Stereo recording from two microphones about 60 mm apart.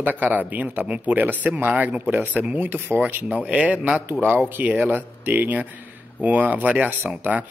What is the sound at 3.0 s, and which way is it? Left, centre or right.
Speech, right.